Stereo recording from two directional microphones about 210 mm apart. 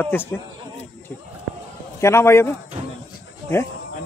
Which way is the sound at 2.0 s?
15° left (ahead or behind).